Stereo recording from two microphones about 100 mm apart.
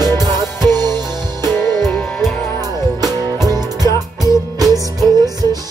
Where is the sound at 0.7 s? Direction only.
40° right (ahead or behind).